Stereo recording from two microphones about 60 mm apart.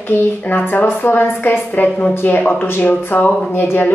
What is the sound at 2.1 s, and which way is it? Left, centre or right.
Speech, left.